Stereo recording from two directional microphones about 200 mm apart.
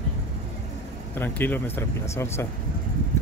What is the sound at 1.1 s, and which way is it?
Speech, 10° left (ahead or behind).